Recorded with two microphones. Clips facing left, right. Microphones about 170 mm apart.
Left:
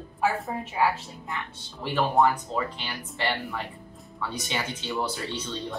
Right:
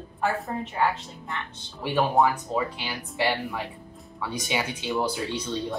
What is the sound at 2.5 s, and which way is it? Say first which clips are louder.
Speech: right 2 dB; 10° right (ahead or behind).